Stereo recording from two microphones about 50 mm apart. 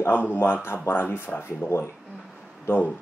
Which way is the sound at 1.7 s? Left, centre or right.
Left.